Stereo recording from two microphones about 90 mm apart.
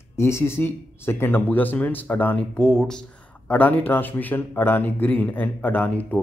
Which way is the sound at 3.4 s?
20° left (ahead or behind).